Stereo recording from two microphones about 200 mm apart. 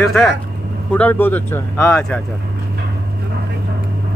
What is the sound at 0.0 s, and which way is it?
A man's voice, centre (ahead or behind).